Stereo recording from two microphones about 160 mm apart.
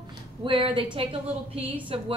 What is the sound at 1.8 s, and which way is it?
Speech, 35° right (ahead or behind).